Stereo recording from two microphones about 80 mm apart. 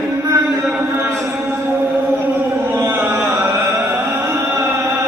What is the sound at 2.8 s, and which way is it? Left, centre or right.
Chant, right.